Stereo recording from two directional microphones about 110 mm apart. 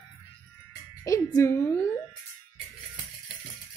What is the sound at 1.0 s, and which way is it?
Speech, 30° left (ahead or behind).